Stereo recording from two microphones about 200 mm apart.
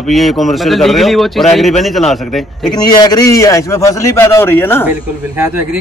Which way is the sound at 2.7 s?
20° left (ahead or behind).